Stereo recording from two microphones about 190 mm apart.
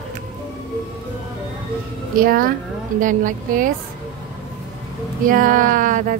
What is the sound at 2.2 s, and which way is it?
Speech, 50° right (ahead or behind).